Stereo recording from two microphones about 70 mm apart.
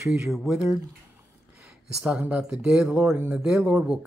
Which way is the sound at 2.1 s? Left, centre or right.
Centre.